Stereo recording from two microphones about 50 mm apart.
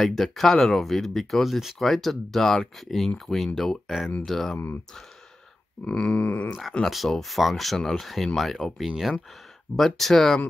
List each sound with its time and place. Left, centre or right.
0.0 s speech: centre
5.9 s a sound: centre
6.2 s speech: left
6.9 s speech: centre
8.8 s speech: centre
9.8 s speech: centre